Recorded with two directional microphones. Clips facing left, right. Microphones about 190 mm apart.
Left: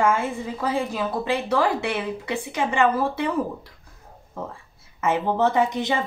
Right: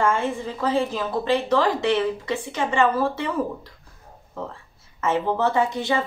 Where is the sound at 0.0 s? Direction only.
10° left (ahead or behind).